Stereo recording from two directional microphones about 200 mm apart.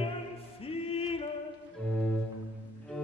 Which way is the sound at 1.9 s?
5° left (ahead or behind).